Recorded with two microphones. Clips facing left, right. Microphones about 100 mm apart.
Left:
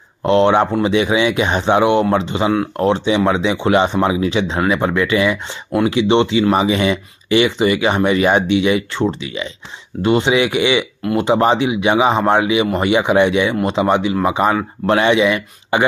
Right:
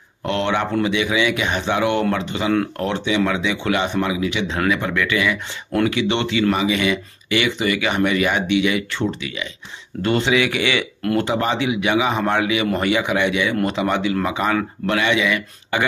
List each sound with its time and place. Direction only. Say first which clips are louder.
0.2 s speech: left 8 dB; 25° left (ahead or behind)